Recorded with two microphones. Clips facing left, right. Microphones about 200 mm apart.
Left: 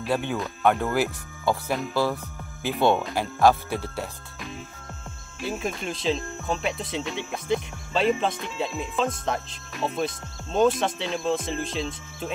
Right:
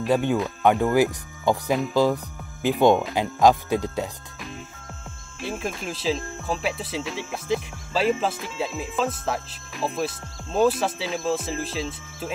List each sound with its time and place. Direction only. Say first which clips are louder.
0.1 s speech: right 5 dB; 15° right (ahead or behind)
5.4 s speech: even; centre (ahead or behind)